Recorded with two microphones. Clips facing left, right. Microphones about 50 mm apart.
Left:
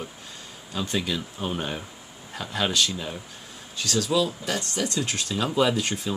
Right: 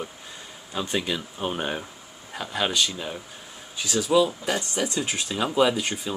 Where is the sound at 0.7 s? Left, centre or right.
Centre.